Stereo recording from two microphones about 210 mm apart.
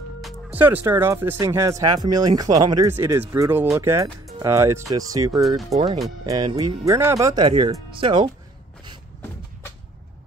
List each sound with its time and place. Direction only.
0.2 s speech: 10° right (ahead or behind)